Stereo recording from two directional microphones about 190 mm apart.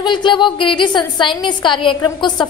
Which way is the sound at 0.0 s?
25° left (ahead or behind).